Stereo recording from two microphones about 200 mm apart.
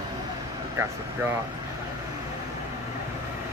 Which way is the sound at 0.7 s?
15° right (ahead or behind).